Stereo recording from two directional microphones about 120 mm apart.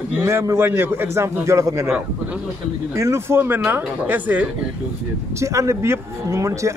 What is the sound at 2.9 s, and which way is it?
A man's voice, 25° right (ahead or behind).